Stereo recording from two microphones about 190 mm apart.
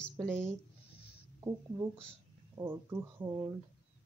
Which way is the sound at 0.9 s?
55° left (ahead or behind).